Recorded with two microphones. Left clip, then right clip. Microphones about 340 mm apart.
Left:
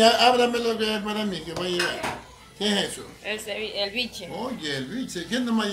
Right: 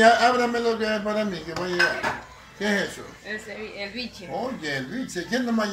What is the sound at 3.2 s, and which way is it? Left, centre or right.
Speech, left.